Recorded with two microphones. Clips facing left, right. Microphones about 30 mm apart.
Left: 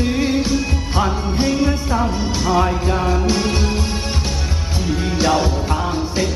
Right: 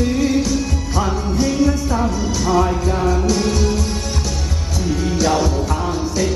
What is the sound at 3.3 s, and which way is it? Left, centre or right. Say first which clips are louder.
Music: right 1 dB; left.